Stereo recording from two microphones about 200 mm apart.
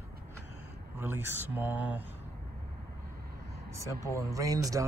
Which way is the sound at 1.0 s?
10° right (ahead or behind).